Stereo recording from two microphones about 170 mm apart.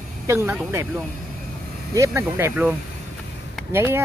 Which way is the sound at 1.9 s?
15° right (ahead or behind).